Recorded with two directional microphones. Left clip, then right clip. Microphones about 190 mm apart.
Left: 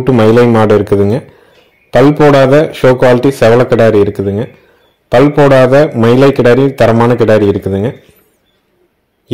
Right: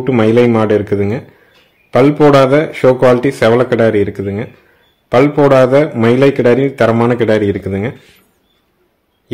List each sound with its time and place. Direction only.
0.0 s a man's voice: 20° left (ahead or behind)